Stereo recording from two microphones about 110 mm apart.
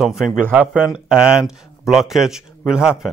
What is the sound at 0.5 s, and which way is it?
Speech, 15° right (ahead or behind).